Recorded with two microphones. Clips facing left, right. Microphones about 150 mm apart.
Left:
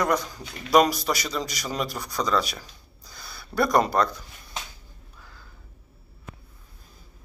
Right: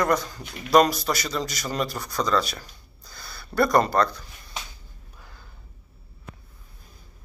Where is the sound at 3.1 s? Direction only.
5° left (ahead or behind).